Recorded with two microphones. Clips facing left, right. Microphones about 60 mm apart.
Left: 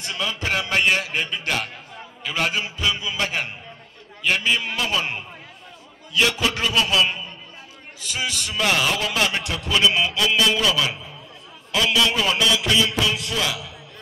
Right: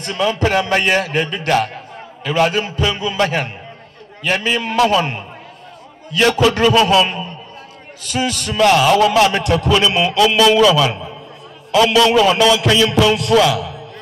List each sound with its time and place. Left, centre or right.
0.0 s a man's voice: right
1.0 s a man's voice: right
2.6 s a man's voice: right
6.1 s a man's voice: right
8.5 s a man's voice: right